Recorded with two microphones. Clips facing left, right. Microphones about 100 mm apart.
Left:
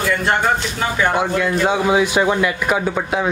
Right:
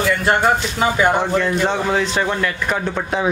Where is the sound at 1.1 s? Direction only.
5° left (ahead or behind).